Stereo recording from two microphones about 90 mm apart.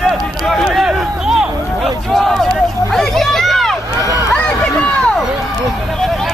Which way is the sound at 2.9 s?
Centre (ahead or behind).